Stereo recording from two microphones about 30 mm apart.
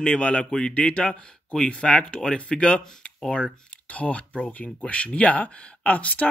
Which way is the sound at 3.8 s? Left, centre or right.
Left.